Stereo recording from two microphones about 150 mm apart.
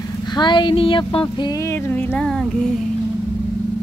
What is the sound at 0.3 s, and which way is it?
Speech, 30° left (ahead or behind).